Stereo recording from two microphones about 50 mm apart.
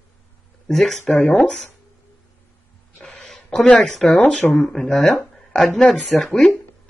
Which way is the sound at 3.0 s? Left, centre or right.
Centre.